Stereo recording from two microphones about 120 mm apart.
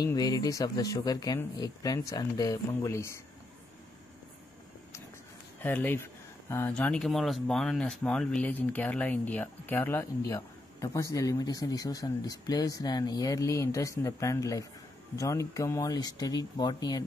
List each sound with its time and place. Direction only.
0.0 s speech: 30° left (ahead or behind)
5.6 s speech: 15° left (ahead or behind); by 17.0 s 35° left (ahead or behind)